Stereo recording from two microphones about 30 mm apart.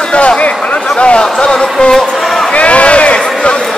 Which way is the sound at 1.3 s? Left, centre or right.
Left.